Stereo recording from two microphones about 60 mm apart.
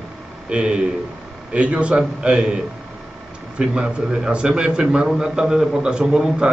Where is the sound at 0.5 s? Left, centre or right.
Centre.